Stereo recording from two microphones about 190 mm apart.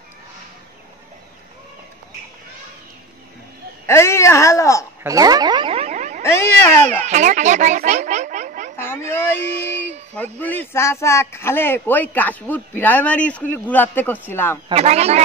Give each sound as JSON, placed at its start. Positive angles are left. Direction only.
{"t": 3.8, "sound": "a man's voice", "side_deg": 15}
{"t": 5.0, "sound": "a sound", "side_deg": -20}
{"t": 6.2, "sound": "cat", "side_deg": 15}
{"t": 6.9, "sound": "speech", "side_deg": -40}
{"t": 9.1, "sound": "a man's voice", "side_deg": 10}
{"t": 14.7, "sound": "speech", "side_deg": -35}